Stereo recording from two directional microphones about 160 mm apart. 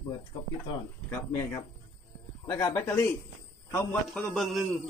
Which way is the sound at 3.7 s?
5° left (ahead or behind).